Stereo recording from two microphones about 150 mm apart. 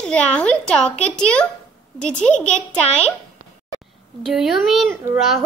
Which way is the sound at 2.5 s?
45° left (ahead or behind).